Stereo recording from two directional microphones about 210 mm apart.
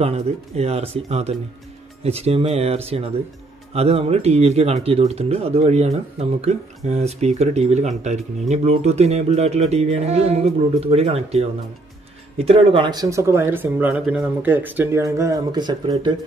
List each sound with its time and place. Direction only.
0.0 s speech: 30° right (ahead or behind)